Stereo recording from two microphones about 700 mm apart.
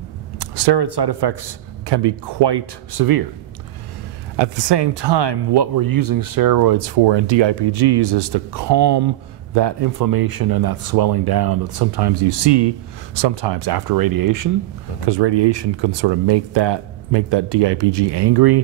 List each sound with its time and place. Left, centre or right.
0.4 s speech: right
4.4 s speech: right